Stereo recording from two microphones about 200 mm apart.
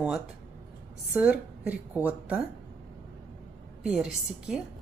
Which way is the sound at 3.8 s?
5° right (ahead or behind).